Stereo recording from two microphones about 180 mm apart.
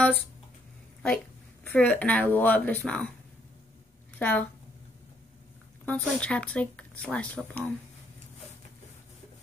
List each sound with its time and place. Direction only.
1.0 s speech: 5° left (ahead or behind)
4.2 s speech: 10° left (ahead or behind)
5.9 s speech: 5° left (ahead or behind)